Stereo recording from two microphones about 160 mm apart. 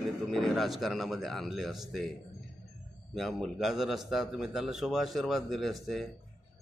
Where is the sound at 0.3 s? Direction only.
Centre (ahead or behind).